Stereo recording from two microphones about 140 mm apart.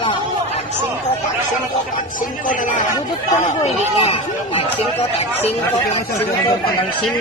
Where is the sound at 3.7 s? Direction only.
45° left (ahead or behind).